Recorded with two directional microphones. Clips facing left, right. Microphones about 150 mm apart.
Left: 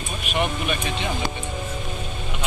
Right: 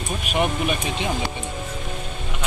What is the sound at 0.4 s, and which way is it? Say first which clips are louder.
Speech: right 2 dB; 10° right (ahead or behind).